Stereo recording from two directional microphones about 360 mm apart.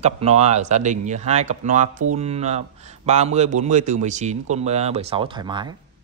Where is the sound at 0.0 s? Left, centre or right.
Centre.